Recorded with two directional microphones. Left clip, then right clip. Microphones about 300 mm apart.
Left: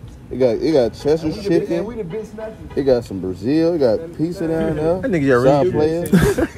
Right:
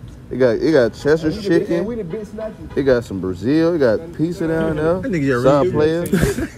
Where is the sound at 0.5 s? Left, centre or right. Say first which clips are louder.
Right 1 dB; right.